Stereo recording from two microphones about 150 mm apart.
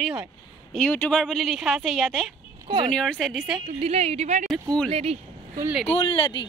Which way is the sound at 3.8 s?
45° right (ahead or behind).